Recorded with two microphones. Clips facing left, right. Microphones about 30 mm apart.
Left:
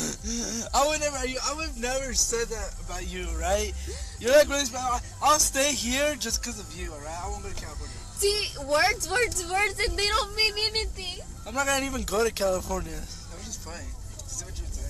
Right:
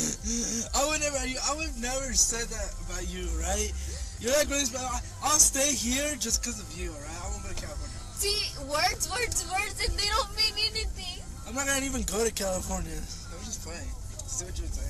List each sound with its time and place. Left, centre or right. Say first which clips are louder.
0.0 s a sound: even; left
0.9 s speech: left 2 dB; centre
3.0 s speech: left 4 dB; centre
4.6 s speech: left 4 dB; centre
5.3 s speech: left 3 dB; left
6.8 s speech: left 3 dB; centre
8.8 s speech: left 5 dB; centre
9.6 s speech: left 7 dB; left
9.8 s speech: left 3 dB; centre
10.7 s speech: left 5 dB; left
11.6 s speech: left 3 dB; centre
13.5 s vehicle: left 1 dB; centre